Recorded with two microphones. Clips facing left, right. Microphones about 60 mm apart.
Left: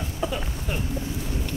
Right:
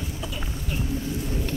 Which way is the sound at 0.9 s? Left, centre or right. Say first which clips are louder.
Right 2 dB; left.